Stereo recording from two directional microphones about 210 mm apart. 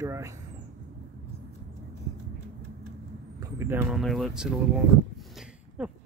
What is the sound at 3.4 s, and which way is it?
Vehicle, 10° right (ahead or behind).